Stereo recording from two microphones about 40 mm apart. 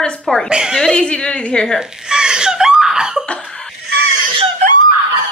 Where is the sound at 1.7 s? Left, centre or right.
Centre.